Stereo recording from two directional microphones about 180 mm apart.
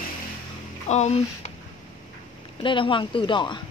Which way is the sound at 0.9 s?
40° left (ahead or behind).